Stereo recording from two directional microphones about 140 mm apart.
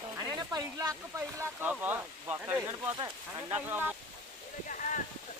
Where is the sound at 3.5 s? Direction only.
15° right (ahead or behind).